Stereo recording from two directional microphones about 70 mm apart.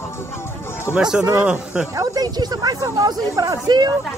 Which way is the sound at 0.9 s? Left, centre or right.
Centre.